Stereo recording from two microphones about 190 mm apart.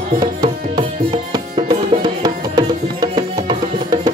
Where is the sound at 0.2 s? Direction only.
20° right (ahead or behind).